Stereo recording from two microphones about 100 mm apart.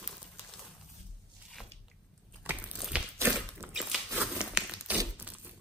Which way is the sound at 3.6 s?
20° right (ahead or behind).